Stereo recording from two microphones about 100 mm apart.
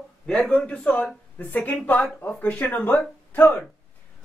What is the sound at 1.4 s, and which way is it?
A woman's voice, 15° left (ahead or behind).